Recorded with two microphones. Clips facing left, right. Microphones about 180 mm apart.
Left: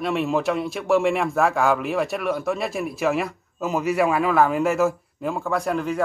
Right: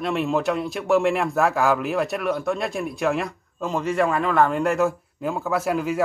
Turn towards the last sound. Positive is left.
turn(degrees=-5)  # may be behind; listen again after turning